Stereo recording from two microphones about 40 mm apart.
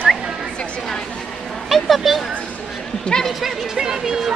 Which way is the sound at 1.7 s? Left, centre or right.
Centre.